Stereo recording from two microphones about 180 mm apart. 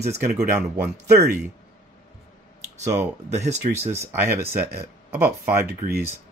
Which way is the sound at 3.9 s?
15° right (ahead or behind).